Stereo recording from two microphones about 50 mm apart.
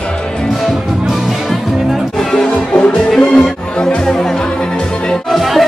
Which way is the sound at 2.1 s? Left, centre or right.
Centre.